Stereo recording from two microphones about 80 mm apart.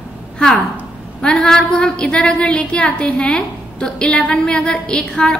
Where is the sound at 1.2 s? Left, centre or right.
Centre.